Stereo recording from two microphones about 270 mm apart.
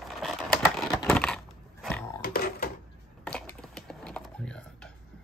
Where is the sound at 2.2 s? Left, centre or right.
Left.